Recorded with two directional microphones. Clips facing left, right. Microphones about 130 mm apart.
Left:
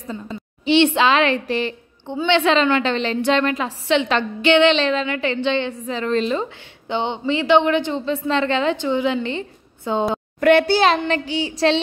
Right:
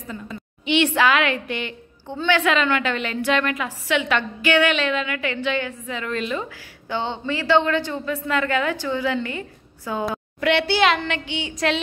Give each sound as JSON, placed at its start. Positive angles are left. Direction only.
{"t": 0.1, "sound": "a woman's voice", "side_deg": 30}
{"t": 2.0, "sound": "a woman's voice", "side_deg": 20}
{"t": 10.4, "sound": "a child's voice", "side_deg": 45}